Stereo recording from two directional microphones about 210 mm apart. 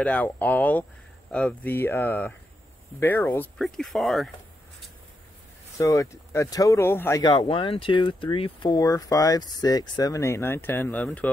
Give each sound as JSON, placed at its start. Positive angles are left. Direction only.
{"t": 0.0, "sound": "speech", "side_deg": 5}
{"t": 5.8, "sound": "speech", "side_deg": 15}